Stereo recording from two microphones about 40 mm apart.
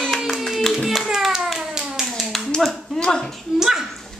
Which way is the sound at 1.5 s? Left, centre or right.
Centre.